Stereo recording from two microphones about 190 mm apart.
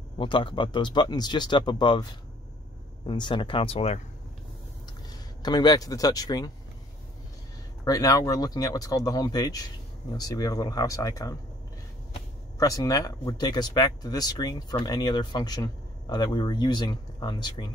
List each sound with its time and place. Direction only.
0.2 s speech: 25° left (ahead or behind)
3.1 s speech: 25° left (ahead or behind)
5.4 s speech: 20° left (ahead or behind)
7.8 s speech: 20° left (ahead or behind)
12.5 s speech: 20° left (ahead or behind)